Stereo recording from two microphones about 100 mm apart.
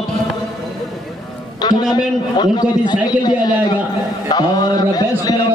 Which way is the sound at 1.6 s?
45° left (ahead or behind).